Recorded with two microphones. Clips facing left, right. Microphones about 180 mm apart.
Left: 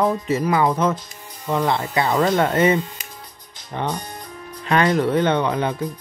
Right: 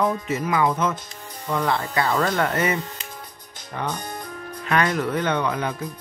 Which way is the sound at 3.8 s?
25° left (ahead or behind).